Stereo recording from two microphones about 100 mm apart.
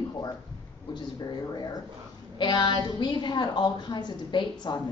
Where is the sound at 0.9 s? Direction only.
45° left (ahead or behind).